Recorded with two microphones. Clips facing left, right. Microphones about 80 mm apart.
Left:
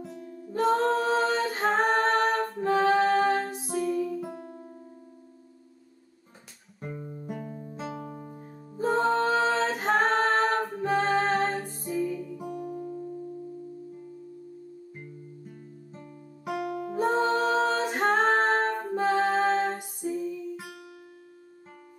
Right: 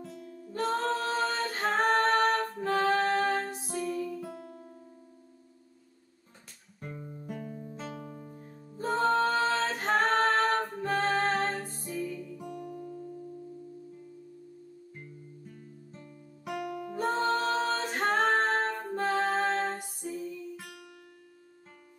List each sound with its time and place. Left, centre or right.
0.0 s music: centre
6.8 s music: centre
8.3 s music: left
8.7 s a capella: centre; by 13.3 s left
15.4 s music: centre